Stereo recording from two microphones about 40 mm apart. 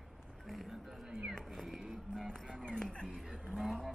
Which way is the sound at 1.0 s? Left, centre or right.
Centre.